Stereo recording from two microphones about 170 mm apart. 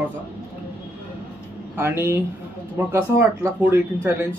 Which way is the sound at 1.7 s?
15° right (ahead or behind).